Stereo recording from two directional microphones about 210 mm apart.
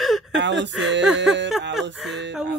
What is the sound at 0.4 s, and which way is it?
Speech, 60° right (ahead or behind).